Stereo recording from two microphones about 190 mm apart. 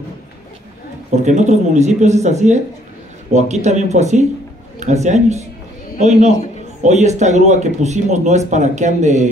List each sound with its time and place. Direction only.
1.1 s speech: 40° right (ahead or behind)